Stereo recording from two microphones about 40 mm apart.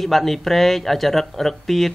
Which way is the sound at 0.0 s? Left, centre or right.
Centre.